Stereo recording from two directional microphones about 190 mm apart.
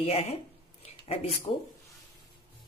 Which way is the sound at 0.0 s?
35° left (ahead or behind).